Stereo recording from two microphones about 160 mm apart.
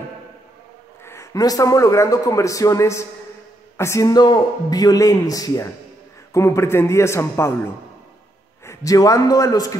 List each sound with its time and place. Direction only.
1.0 s a man's voice: 20° left (ahead or behind)
8.6 s a man's voice: 20° left (ahead or behind)